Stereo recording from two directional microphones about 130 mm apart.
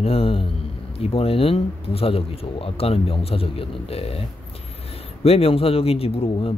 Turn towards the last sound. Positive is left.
turn(degrees=45)  # may be behind; listen again after turning